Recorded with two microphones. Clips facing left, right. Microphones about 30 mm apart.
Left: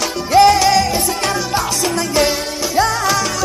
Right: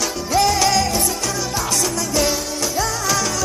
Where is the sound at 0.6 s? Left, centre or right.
Centre.